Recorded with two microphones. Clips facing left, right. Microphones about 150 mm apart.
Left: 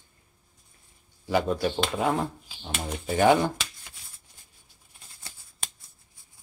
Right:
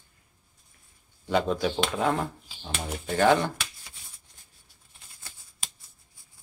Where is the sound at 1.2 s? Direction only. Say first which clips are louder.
Even; 5° left (ahead or behind).